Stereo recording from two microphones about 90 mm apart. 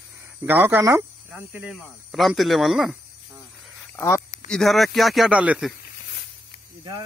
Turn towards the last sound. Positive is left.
turn(degrees=-15)  # may be behind; listen again after turning